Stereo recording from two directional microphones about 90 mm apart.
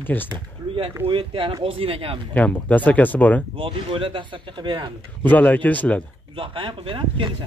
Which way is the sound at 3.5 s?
80° right.